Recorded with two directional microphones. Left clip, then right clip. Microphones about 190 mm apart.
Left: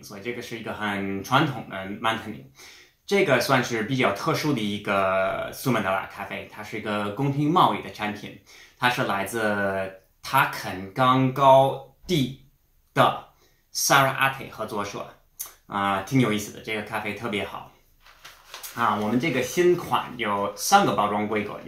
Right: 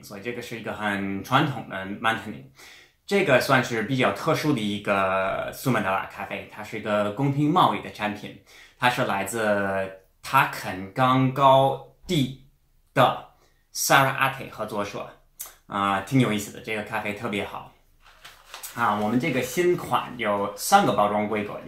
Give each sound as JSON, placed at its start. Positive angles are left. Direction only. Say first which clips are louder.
{"t": 0.1, "sound": "speech", "louder": "even", "side_deg": 0}
{"t": 13.7, "sound": "speech", "louder": "even", "side_deg": 0}
{"t": 18.8, "sound": "speech", "louder": "even", "side_deg": 0}